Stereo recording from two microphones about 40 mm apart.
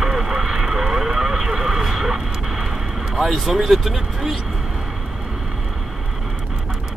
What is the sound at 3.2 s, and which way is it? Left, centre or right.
Speech, centre.